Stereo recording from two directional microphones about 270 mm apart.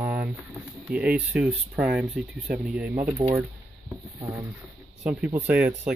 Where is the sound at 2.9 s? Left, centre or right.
Right.